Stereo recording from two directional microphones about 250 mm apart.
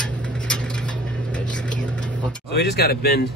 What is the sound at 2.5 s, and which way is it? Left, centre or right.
Speech, left.